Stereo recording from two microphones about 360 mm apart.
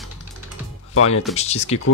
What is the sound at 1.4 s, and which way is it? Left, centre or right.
Speech, centre.